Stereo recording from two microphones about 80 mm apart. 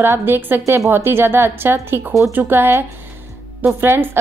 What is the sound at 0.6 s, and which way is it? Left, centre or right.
Speech, right.